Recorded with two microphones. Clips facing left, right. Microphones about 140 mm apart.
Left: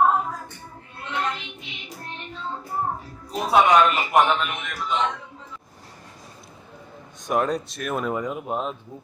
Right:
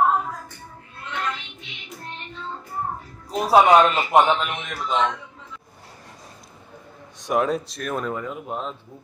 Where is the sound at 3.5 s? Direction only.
35° right (ahead or behind).